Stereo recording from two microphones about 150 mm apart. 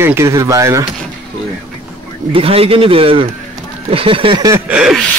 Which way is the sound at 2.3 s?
40° right (ahead or behind).